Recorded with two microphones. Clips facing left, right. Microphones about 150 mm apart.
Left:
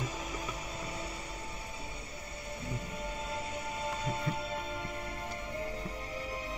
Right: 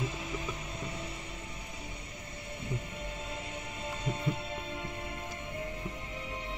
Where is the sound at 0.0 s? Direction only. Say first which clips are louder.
Right 2 dB; 40° left (ahead or behind).